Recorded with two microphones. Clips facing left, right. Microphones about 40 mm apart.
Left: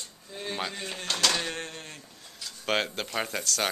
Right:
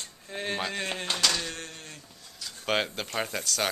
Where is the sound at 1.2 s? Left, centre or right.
Centre.